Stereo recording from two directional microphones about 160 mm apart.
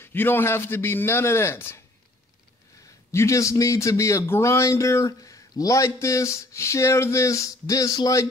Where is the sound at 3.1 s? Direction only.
20° left (ahead or behind).